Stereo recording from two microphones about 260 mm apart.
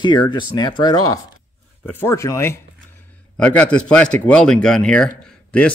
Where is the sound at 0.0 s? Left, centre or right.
Centre.